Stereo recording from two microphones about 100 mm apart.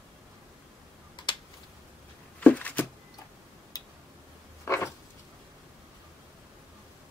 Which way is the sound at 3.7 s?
40° left (ahead or behind).